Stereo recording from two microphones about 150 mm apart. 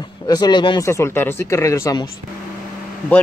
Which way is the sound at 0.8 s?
15° left (ahead or behind).